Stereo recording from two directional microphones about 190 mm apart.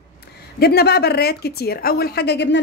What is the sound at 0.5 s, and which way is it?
A woman's voice, 55° left (ahead or behind).